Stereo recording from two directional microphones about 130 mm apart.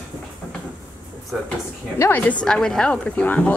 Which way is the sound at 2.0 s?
15° left (ahead or behind).